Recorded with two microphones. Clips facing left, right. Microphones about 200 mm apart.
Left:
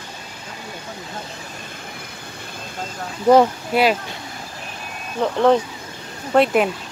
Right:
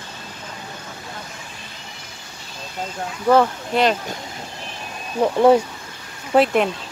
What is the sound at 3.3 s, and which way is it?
Speech, 10° left (ahead or behind).